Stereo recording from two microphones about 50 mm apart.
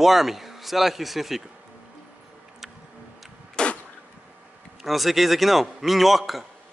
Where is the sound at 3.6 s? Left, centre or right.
Centre.